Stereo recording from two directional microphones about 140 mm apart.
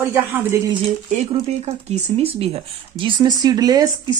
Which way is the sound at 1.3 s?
50° right (ahead or behind).